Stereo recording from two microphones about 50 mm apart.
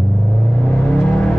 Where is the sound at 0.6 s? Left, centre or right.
Left.